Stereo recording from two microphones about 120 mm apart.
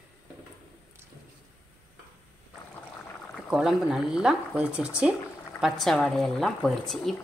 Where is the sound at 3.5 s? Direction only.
5° right (ahead or behind).